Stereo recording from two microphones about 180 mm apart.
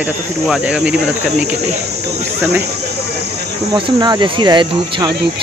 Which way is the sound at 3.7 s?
25° right (ahead or behind).